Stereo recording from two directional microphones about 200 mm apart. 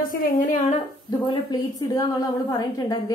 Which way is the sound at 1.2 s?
20° left (ahead or behind).